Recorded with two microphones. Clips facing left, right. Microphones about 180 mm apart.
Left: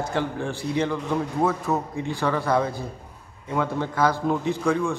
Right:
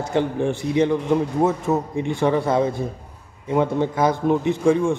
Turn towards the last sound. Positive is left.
turn(degrees=-25)  # may be behind; listen again after turning